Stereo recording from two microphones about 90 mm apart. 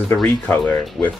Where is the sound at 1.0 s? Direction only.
5° left (ahead or behind).